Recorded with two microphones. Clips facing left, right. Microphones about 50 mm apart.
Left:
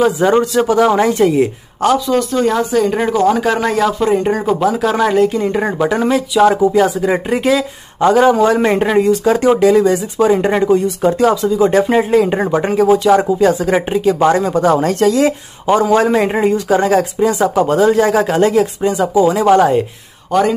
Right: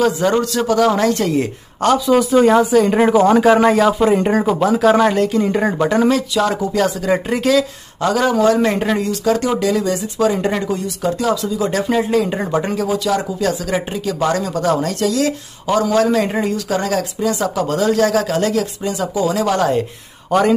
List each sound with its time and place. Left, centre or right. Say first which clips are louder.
0.0 s a man's voice: left 3 dB; left
2.0 s speech: right 2 dB; centre; by 19.7 s left
20.2 s speech: left 1 dB; centre